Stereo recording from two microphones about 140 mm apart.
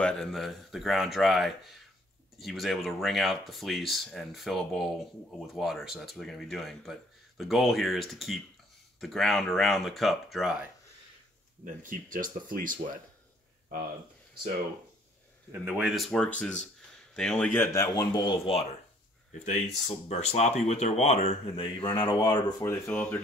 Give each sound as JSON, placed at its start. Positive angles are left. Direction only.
{"t": 0.0, "sound": "speech", "side_deg": 5}
{"t": 11.6, "sound": "speech", "side_deg": -75}
{"t": 15.7, "sound": "speech", "side_deg": 0}
{"t": 17.1, "sound": "speech", "side_deg": 5}
{"t": 17.7, "sound": "speech", "side_deg": 30}
{"t": 22.6, "sound": "speech", "side_deg": 15}